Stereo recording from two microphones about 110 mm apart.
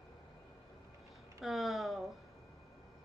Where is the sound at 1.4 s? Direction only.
Centre (ahead or behind).